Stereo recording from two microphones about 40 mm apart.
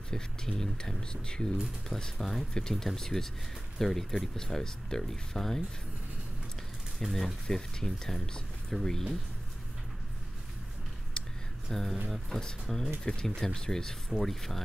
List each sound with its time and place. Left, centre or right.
0.1 s speech: centre
7.0 s speech: centre
11.2 s a sound: centre
11.7 s speech: centre
13.0 s speech: left